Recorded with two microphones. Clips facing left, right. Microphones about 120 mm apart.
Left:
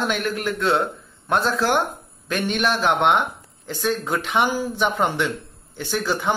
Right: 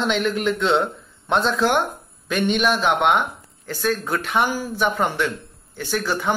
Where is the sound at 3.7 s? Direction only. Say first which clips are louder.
Even; 15° left (ahead or behind).